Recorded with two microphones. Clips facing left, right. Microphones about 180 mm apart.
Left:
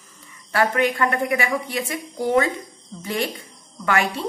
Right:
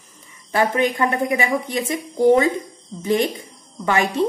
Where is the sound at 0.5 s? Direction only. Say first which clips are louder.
Right 1 dB; 20° right (ahead or behind).